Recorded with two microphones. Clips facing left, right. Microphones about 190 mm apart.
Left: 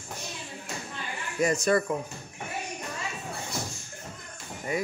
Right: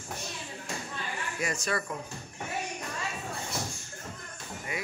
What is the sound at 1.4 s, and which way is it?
Speech, 45° left (ahead or behind).